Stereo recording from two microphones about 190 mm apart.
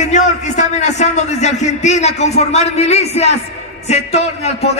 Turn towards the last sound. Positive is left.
turn(degrees=35)  # may be behind; listen again after turning